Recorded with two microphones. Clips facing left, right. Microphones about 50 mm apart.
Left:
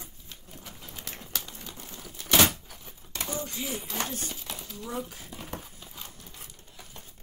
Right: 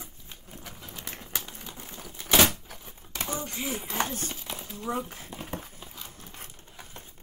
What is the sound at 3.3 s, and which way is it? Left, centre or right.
Speech, right.